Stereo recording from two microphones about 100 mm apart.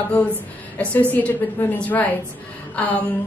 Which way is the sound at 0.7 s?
15° left (ahead or behind).